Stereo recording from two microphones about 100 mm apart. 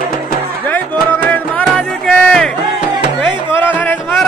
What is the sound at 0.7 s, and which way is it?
Music, 15° left (ahead or behind).